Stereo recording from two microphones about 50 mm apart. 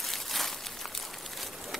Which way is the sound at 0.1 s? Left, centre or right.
Centre.